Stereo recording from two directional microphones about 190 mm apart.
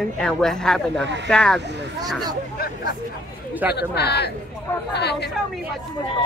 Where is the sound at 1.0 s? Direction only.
65° right (ahead or behind).